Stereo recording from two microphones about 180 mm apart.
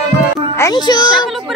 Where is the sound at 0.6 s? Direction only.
20° left (ahead or behind).